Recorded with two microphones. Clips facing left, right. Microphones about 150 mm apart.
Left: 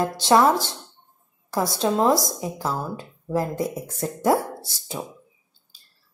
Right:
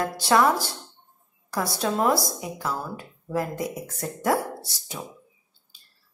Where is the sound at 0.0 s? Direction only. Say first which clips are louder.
Left 3 dB; 25° left (ahead or behind).